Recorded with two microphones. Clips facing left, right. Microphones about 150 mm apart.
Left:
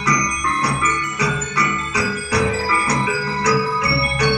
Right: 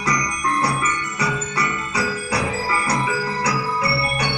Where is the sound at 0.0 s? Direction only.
30° right (ahead or behind).